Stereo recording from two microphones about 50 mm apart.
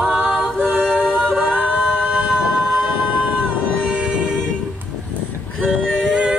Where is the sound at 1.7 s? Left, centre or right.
Centre.